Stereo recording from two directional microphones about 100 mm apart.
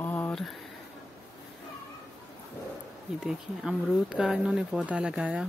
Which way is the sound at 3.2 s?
5° right (ahead or behind).